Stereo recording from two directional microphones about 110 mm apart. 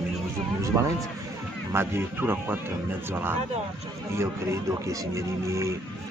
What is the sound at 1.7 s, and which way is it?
A man's voice, 20° right (ahead or behind).